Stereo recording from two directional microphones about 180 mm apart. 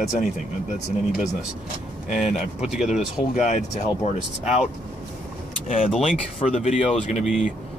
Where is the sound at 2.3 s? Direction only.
5° right (ahead or behind).